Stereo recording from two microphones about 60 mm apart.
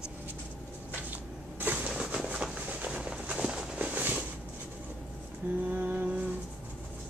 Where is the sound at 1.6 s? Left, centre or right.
Right.